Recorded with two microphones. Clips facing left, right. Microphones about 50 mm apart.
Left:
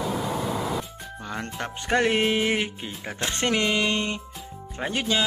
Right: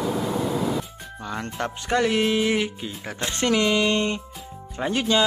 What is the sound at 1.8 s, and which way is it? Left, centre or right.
Speech, left.